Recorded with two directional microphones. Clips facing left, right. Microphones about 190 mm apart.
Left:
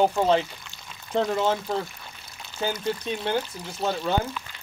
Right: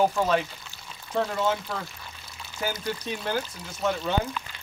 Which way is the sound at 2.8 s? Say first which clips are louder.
Left 3 dB; 25° left (ahead or behind).